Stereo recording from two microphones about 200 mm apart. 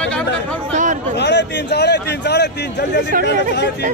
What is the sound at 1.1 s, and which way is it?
A man's voice, 60° left (ahead or behind).